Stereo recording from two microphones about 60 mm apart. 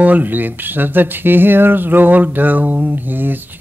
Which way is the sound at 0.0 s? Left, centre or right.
Right.